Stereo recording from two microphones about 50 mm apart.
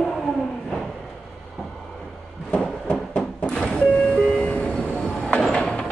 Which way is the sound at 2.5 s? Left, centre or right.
Left.